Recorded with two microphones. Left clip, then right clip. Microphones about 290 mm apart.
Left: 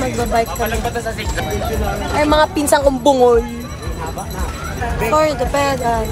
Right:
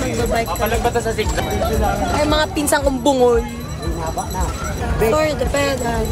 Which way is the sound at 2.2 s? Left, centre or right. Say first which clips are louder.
Left 6 dB; centre.